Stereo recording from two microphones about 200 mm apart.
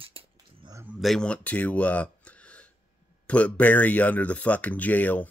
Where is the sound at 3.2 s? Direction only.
5° left (ahead or behind).